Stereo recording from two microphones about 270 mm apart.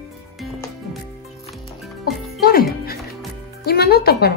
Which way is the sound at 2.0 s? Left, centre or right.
Left.